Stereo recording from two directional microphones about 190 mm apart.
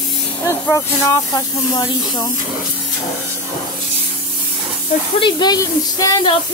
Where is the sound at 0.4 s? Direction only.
15° left (ahead or behind).